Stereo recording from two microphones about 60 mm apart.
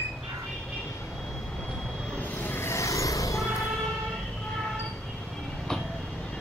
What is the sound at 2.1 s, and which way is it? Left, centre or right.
Vehicle, left.